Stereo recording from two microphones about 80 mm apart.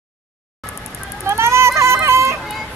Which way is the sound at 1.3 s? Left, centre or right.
Right.